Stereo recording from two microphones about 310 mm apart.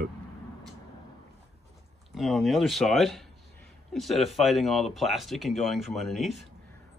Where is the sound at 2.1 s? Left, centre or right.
Centre.